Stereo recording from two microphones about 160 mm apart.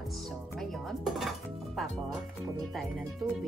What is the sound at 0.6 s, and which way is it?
Speech, centre (ahead or behind).